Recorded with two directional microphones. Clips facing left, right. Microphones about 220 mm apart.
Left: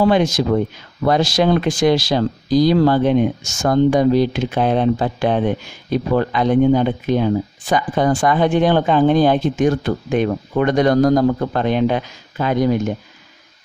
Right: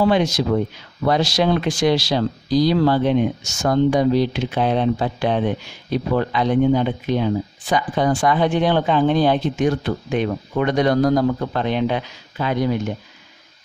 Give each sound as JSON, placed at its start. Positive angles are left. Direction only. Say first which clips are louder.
{"t": 0.0, "sound": "speech", "louder": "left 2 dB", "side_deg": 50}